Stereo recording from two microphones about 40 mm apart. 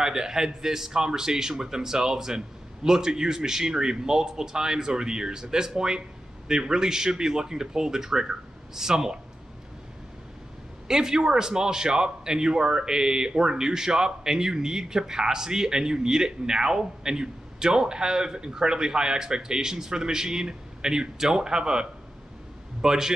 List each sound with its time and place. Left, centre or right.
0.0 s a man's voice: centre
10.9 s a man's voice: centre